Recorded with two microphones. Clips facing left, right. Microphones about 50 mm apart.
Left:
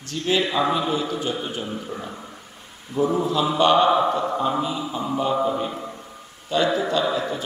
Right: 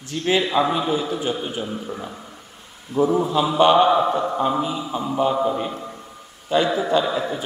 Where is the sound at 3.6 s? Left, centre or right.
Centre.